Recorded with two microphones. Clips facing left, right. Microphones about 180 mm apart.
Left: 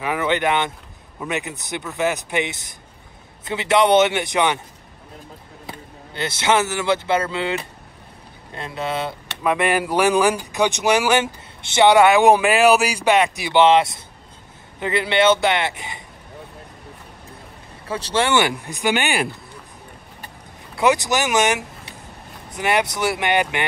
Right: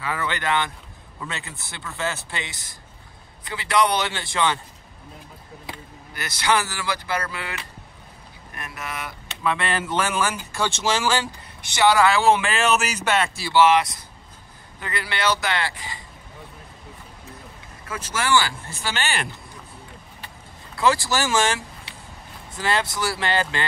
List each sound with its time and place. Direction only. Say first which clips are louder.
0.0 s a man's voice: left 7 dB; 15° left (ahead or behind)
6.1 s speech: left 4 dB; 25° left (ahead or behind)
9.4 s a man's voice: left 5 dB; 15° left (ahead or behind)
17.8 s a man's voice: left 5 dB; 30° left (ahead or behind)
20.7 s speech: left 3 dB; 20° left (ahead or behind)